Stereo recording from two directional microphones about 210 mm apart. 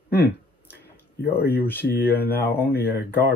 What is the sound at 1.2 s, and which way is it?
Speech, 50° left (ahead or behind).